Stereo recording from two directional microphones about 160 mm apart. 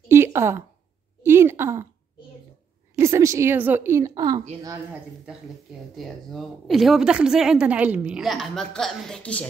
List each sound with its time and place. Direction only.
0.1 s a sound: 15° right (ahead or behind)
3.0 s a woman's voice: 20° right (ahead or behind)
5.9 s a woman's voice: centre (ahead or behind)